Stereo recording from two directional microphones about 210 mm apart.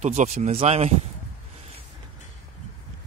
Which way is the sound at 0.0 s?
35° right (ahead or behind).